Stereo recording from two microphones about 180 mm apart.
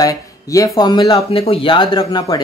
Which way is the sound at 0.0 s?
20° left (ahead or behind).